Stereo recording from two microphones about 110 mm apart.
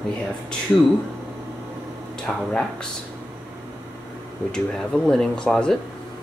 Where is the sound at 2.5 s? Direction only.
10° left (ahead or behind).